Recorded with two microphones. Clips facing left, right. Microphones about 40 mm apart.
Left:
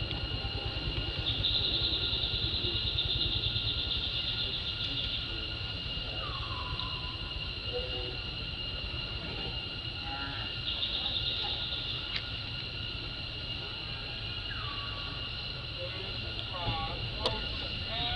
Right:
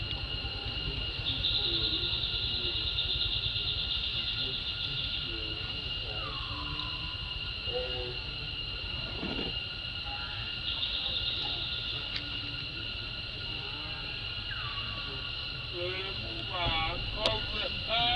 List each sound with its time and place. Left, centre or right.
16.5 s vehicle: right